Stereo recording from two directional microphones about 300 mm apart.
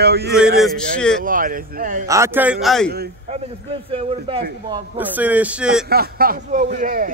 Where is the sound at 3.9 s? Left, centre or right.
Centre.